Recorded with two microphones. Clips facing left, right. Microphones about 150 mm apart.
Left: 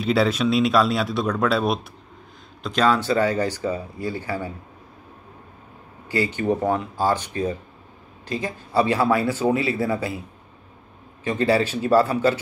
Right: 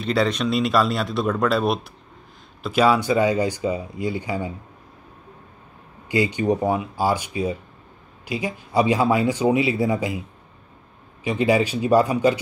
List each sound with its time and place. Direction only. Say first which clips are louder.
0.0 s speech: left 1 dB; 5° left (ahead or behind); by 4.5 s 15° right (ahead or behind)
6.0 s speech: right 2 dB; 15° right (ahead or behind)
11.2 s speech: right 1 dB; 15° right (ahead or behind)